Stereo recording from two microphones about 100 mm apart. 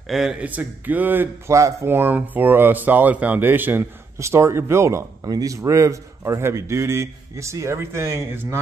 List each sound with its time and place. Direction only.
0.1 s speech: 5° right (ahead or behind)
0.5 s speech: 15° right (ahead or behind)
1.5 s speech: 30° right (ahead or behind)